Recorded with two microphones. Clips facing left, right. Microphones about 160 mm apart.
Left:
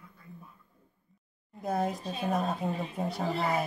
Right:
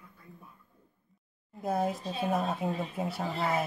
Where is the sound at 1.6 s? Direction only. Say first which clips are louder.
Even; centre (ahead or behind).